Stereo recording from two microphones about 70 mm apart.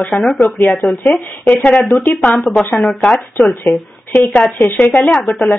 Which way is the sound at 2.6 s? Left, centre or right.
Centre.